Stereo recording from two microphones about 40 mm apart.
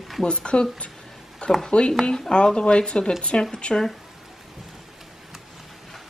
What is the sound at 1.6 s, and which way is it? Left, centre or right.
A woman's voice, left.